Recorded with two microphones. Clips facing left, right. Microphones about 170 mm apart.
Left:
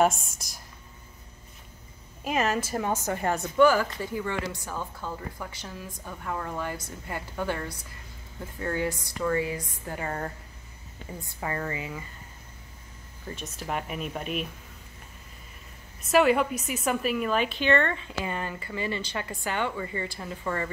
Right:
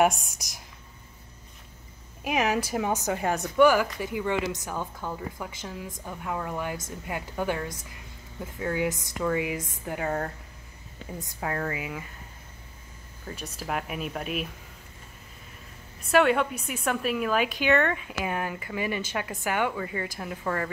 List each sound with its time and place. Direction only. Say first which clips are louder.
0.0 s a woman's voice: even; 15° right (ahead or behind)
2.2 s a woman's voice: right 1 dB; 10° right (ahead or behind)
8.5 s speech: right 1 dB; 5° right (ahead or behind)
8.8 s a woman's voice: right 1 dB; 20° right (ahead or behind); by 10.3 s 5° right (ahead or behind)
11.4 s speech: right 1 dB; centre (ahead or behind)
11.7 s a woman's voice: right 1 dB; 10° right (ahead or behind)
13.3 s speech: even; 5° right (ahead or behind)
16.1 s a woman's voice: even; centre (ahead or behind)